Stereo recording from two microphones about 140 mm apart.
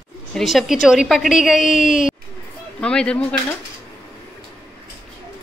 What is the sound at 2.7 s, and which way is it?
Speech, 5° left (ahead or behind).